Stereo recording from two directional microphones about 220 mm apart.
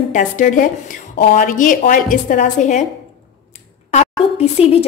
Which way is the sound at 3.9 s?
30° left (ahead or behind).